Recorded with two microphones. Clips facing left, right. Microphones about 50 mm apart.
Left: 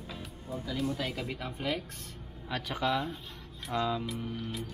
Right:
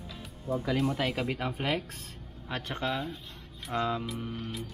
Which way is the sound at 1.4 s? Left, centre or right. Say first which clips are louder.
Right 3 dB; right.